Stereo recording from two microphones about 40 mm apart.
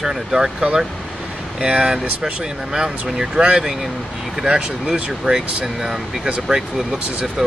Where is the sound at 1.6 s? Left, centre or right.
Right.